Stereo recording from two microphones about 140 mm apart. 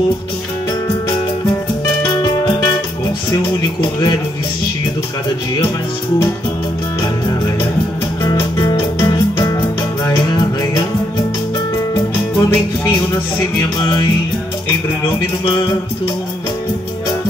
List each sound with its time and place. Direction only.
3.3 s speech: 30° left (ahead or behind)
8.2 s music: 30° left (ahead or behind)
11.9 s music: 25° left (ahead or behind)